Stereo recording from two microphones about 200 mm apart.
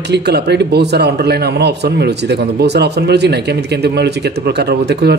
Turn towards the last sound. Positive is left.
turn(degrees=-55)  # may be behind; listen again after turning